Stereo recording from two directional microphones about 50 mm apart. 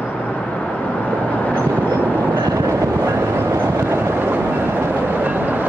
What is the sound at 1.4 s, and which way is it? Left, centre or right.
Vehicle, left.